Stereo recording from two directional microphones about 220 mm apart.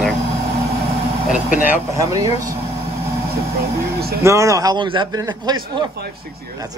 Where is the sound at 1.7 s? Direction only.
15° right (ahead or behind).